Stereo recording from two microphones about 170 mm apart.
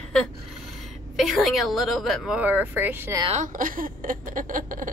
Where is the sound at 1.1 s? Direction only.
Centre (ahead or behind).